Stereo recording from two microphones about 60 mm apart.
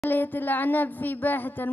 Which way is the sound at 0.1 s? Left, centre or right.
Left.